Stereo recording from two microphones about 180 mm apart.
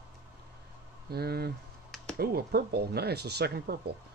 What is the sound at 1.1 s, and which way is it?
Speech, 60° right (ahead or behind).